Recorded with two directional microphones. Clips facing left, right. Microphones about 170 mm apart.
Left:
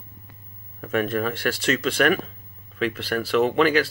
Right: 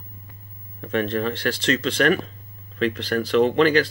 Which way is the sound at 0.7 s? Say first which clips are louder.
Even; 5° left (ahead or behind).